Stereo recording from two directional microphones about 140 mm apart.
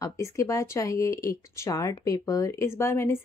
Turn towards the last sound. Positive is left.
turn(degrees=15)  # may be behind; listen again after turning